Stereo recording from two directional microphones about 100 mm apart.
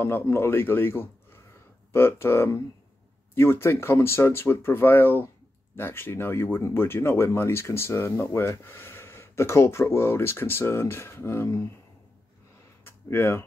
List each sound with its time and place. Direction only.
0.0 s speech: 25° left (ahead or behind)
12.8 s speech: 25° left (ahead or behind)